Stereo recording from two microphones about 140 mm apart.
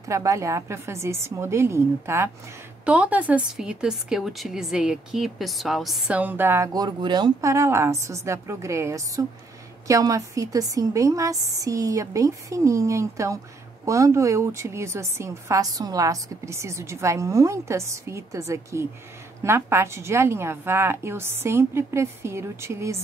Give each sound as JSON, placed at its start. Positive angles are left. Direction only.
{"t": 0.1, "sound": "a woman's voice", "side_deg": -20}
{"t": 7.5, "sound": "a woman's voice", "side_deg": -20}